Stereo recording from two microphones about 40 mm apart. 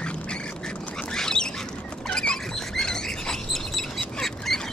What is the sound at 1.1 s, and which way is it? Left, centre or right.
Duck, centre.